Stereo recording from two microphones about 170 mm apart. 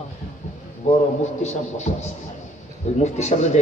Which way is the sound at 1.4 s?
45° left (ahead or behind).